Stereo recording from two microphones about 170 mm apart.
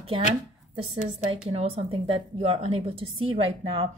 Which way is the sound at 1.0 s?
30° right (ahead or behind).